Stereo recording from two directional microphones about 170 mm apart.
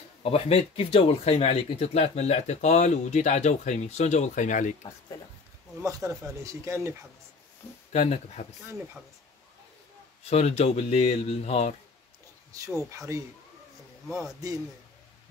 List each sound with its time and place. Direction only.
0.2 s speech: 35° left (ahead or behind)
5.8 s speech: 20° right (ahead or behind)
7.9 s speech: 40° left (ahead or behind)
10.3 s speech: 40° left (ahead or behind)
12.9 s speech: 20° right (ahead or behind)
14.0 s a man's voice: centre (ahead or behind)